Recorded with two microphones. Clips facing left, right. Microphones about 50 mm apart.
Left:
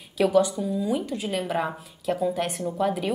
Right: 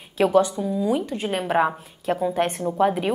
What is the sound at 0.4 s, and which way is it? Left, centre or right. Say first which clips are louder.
Speech: right 2 dB; right.